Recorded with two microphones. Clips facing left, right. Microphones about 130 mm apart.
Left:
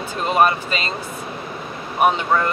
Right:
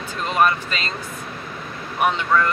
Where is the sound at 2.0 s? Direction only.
45° left (ahead or behind).